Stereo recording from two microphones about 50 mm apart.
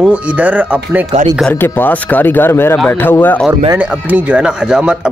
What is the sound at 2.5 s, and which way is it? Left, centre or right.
Speech, left.